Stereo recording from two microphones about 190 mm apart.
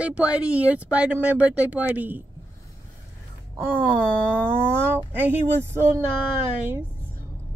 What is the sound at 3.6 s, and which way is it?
Speech, 10° right (ahead or behind).